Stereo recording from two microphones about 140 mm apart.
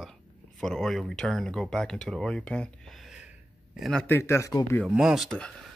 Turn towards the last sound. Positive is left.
turn(degrees=0)  # may be behind; listen again after turning